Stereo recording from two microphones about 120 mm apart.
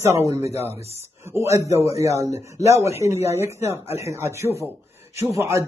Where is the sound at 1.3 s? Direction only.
25° right (ahead or behind).